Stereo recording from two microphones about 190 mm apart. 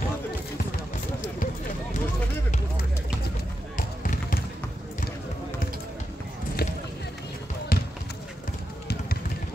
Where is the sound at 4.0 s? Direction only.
45° left (ahead or behind).